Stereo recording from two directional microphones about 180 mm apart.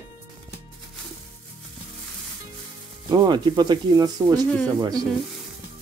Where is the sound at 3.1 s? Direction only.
25° right (ahead or behind).